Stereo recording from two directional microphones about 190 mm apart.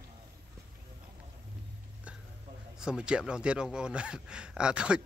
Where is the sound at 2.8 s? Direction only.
5° right (ahead or behind).